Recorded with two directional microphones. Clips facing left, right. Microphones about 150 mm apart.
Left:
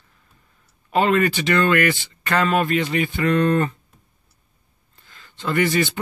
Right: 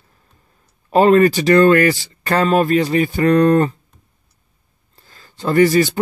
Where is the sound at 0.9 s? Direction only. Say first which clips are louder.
Right 7 dB; 40° right (ahead or behind).